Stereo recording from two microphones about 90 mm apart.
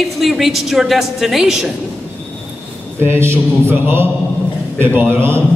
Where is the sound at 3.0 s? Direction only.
25° right (ahead or behind).